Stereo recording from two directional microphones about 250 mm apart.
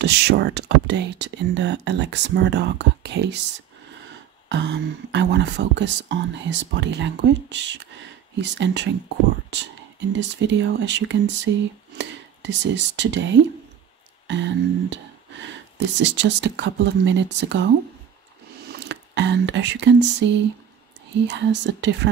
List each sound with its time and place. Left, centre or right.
0.0 s speech: right
4.5 s speech: right
10.1 s speech: right
18.7 s speech: right